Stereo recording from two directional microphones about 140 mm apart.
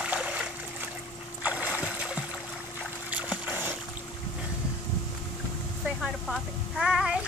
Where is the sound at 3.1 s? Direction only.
10° right (ahead or behind).